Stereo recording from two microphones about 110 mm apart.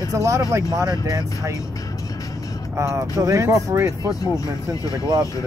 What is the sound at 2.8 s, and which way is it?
Speech, 30° right (ahead or behind).